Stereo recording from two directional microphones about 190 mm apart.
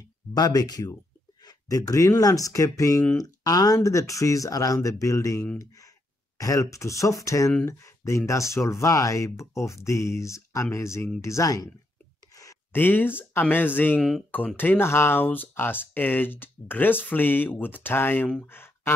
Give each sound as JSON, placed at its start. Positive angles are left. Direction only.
{"t": 0.3, "sound": "speech", "side_deg": 20}